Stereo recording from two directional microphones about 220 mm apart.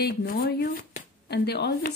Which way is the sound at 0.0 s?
40° left (ahead or behind).